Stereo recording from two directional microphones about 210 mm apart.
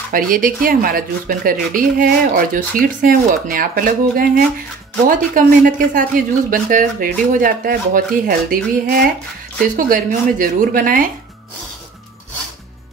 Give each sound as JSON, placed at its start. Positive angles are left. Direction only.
{"t": 0.1, "sound": "speech", "side_deg": -40}